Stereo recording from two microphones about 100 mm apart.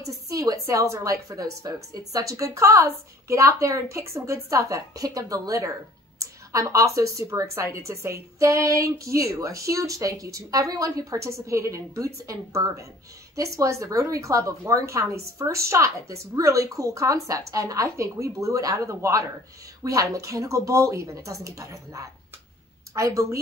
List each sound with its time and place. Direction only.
0.0 s a woman's voice: 35° right (ahead or behind)